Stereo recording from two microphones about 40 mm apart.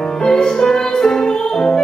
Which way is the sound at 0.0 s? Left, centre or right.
Centre.